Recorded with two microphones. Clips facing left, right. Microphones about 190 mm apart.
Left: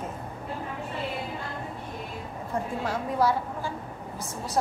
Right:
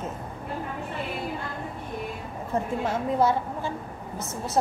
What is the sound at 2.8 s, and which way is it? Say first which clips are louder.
A woman's voice: right 2 dB; 25° right (ahead or behind).